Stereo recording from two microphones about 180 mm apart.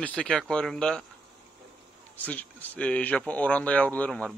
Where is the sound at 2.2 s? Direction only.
10° left (ahead or behind).